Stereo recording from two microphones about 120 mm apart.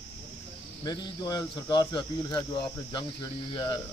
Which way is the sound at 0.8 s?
35° left (ahead or behind).